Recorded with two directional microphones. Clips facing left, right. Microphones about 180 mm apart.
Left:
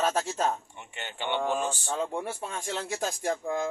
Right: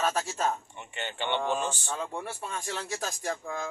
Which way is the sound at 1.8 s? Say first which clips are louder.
Left 4 dB; 30° left (ahead or behind).